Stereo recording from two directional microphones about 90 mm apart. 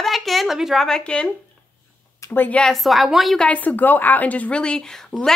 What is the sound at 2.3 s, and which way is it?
Speech, 20° left (ahead or behind).